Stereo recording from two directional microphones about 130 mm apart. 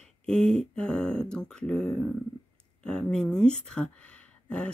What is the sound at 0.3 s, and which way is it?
Speech, 5° left (ahead or behind).